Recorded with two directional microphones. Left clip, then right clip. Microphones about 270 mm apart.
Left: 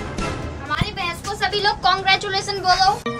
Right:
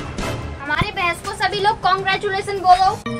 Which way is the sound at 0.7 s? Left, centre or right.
Centre.